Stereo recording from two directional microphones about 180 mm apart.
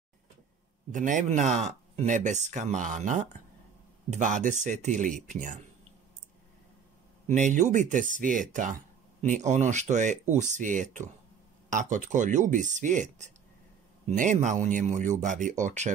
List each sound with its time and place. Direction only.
0.9 s speech: 45° right (ahead or behind)
7.2 s speech: 40° right (ahead or behind)